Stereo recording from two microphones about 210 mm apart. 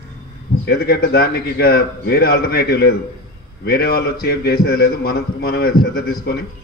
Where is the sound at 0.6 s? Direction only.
50° left (ahead or behind).